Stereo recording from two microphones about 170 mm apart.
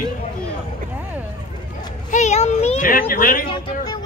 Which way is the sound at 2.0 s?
45° left (ahead or behind).